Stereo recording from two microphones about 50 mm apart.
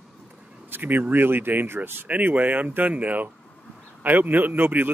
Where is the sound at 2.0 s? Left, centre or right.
Right.